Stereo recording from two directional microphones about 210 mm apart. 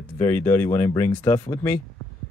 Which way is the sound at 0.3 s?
10° left (ahead or behind).